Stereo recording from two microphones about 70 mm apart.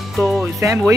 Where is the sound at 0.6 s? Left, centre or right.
Right.